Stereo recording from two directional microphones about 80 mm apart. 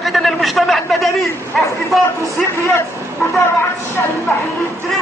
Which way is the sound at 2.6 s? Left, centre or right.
Left.